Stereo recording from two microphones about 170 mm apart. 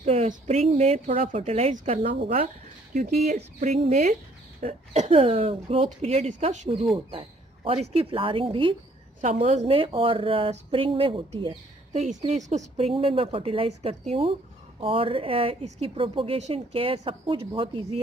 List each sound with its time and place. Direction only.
0.0 s a sound: 35° right (ahead or behind)
0.5 s speech: 35° right (ahead or behind)
2.2 s speech: 55° right (ahead or behind)
7.1 s speech: 30° right (ahead or behind)
9.2 s speech: 45° right (ahead or behind); by 17.8 s 30° right (ahead or behind)